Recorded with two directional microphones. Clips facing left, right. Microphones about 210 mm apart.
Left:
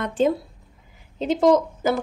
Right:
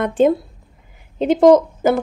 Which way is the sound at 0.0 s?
55° right (ahead or behind).